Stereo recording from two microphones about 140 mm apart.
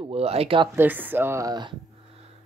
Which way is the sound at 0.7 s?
15° right (ahead or behind).